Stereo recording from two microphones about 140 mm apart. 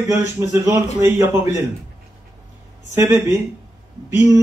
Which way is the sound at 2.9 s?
15° right (ahead or behind).